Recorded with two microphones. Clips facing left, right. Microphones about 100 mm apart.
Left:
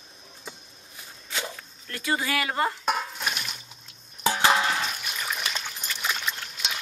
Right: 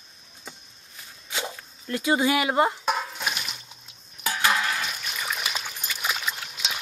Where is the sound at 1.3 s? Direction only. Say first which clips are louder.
Right 1 dB; 20° right (ahead or behind).